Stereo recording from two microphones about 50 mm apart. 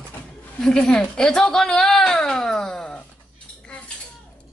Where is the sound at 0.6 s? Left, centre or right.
Centre.